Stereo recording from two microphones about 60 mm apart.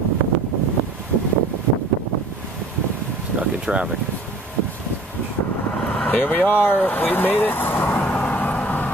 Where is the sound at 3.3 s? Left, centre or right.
Centre.